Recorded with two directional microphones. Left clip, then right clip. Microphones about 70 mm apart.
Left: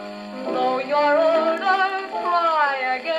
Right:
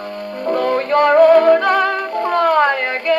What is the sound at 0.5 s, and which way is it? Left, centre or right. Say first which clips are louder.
Music: right 5 dB; left.